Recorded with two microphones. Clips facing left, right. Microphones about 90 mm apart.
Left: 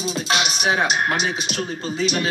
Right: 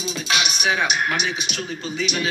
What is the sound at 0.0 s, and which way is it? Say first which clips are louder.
Speech: left 2 dB; 35° left (ahead or behind).